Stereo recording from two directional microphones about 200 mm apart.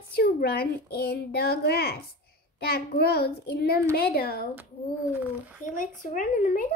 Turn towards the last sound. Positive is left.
turn(degrees=45)  # may be behind; listen again after turning